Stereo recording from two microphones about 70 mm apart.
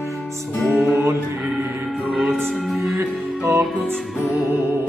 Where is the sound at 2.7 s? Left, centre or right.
Centre.